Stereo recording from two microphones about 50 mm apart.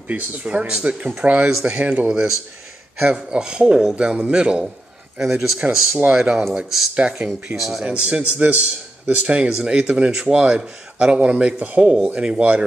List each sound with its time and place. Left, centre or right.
0.1 s speech: right
1.5 s speech: centre
1.8 s a man's voice: right
2.0 s speech: centre
7.0 s speech: right
7.5 s speech: centre
7.8 s speech: right